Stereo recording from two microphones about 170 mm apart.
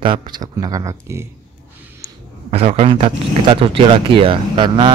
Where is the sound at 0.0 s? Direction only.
25° right (ahead or behind).